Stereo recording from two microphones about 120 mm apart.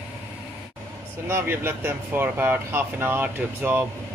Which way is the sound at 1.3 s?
20° right (ahead or behind).